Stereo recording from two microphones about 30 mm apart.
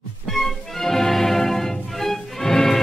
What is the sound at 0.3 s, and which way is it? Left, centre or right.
Music, centre.